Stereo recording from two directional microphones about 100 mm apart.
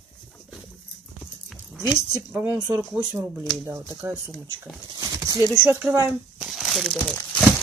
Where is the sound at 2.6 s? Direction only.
30° right (ahead or behind).